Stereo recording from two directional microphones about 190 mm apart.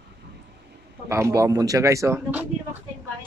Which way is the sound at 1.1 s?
15° right (ahead or behind).